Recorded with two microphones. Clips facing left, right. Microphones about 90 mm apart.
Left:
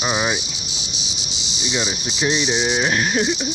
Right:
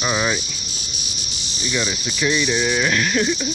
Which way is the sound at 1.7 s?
20° left (ahead or behind).